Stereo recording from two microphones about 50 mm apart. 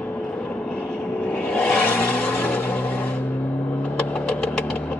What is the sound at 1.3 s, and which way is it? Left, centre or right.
Vehicle, left.